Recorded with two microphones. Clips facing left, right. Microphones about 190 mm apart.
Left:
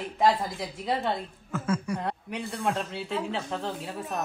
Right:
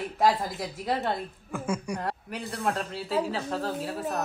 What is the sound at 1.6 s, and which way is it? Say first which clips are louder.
Speech: left 2 dB; 10° right (ahead or behind).